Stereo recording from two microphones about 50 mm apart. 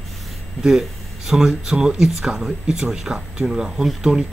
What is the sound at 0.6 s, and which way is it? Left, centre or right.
Speech, centre.